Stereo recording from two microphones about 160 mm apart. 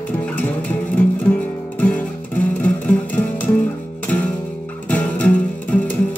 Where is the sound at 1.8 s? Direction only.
10° left (ahead or behind).